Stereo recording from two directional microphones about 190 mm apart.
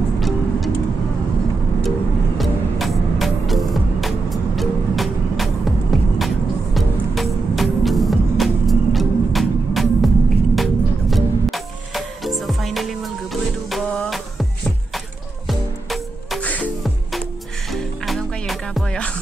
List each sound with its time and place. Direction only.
2.3 s music: centre (ahead or behind)